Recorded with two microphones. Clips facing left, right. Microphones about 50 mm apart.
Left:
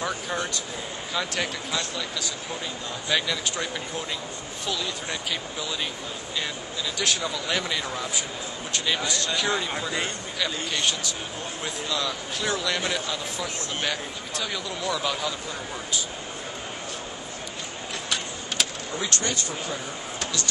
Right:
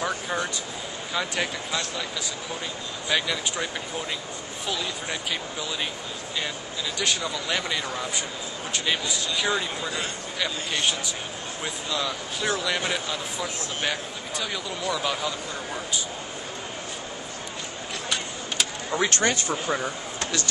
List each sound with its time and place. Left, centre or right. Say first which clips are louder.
0.0 s speech: right 1 dB; centre
7.0 s speech: even; centre
10.8 s speech: right 2 dB; centre
18.9 s speech: right 5 dB; right